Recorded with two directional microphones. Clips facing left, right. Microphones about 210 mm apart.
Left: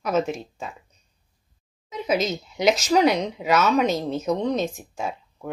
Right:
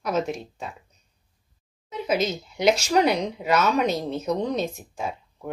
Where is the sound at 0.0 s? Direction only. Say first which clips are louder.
Left 2 dB; 5° left (ahead or behind).